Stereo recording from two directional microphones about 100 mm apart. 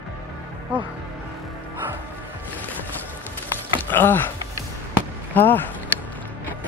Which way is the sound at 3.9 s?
20° left (ahead or behind).